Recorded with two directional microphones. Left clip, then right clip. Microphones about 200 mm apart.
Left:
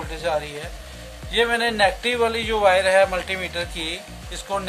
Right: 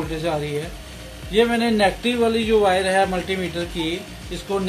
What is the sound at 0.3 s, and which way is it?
A man's voice, 15° left (ahead or behind).